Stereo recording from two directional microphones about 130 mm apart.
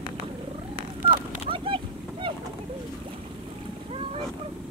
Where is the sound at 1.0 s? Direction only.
45° right (ahead or behind).